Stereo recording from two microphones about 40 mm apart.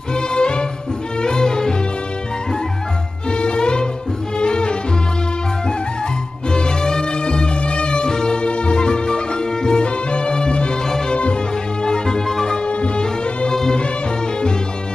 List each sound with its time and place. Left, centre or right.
0.1 s music: left
3.3 s music: left
6.5 s music: centre
11.8 s music: centre
13.5 s music: centre